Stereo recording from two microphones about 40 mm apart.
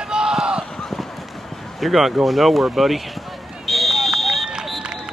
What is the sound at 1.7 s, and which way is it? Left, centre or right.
Speech, centre.